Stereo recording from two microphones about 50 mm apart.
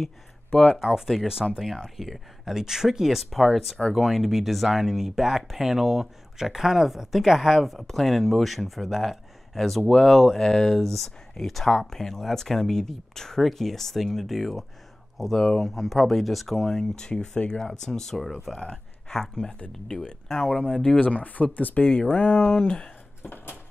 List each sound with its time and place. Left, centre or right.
1.1 s speech: centre
23.2 s dishes: left